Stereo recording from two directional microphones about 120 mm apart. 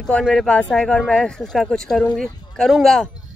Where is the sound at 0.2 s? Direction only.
Centre (ahead or behind).